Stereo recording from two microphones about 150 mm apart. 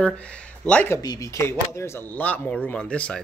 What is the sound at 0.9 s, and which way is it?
Speech, 25° left (ahead or behind).